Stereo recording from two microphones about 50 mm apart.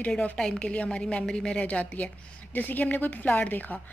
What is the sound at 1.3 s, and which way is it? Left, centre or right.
Speech, centre.